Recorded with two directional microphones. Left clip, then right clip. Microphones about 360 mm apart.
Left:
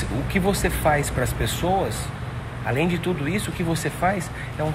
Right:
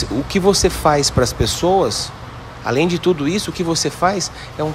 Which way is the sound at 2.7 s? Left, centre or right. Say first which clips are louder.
Right 8 dB; centre.